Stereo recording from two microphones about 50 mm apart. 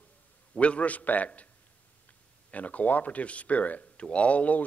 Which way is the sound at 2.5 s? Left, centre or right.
Left.